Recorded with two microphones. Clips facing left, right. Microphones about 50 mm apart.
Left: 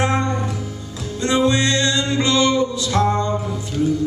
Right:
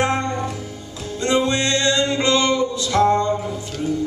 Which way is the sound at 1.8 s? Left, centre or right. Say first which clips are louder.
Even; right.